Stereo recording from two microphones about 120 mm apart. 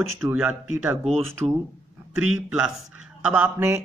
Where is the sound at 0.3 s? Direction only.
15° right (ahead or behind).